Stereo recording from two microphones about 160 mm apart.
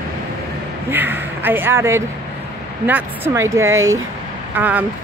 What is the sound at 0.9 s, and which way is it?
Speech, 10° right (ahead or behind).